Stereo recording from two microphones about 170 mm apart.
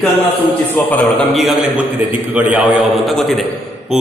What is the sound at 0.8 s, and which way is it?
Speech, 10° left (ahead or behind).